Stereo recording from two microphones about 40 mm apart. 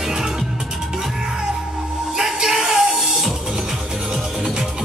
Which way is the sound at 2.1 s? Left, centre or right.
Centre.